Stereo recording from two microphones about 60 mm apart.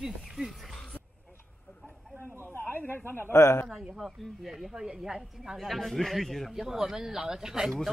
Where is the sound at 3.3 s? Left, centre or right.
Left.